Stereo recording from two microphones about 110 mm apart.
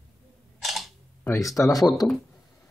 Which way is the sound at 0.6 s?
Centre (ahead or behind).